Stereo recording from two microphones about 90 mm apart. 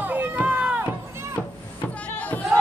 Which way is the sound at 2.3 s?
20° left (ahead or behind).